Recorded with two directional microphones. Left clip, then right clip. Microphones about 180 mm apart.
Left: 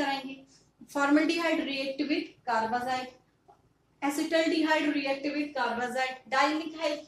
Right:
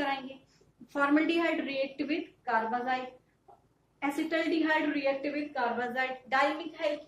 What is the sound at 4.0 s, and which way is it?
A woman's voice, 15° left (ahead or behind).